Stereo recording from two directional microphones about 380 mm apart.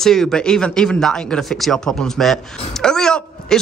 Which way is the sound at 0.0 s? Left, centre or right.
Centre.